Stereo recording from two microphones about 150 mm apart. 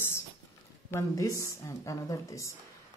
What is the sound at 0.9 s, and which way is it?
A woman's voice, 20° left (ahead or behind).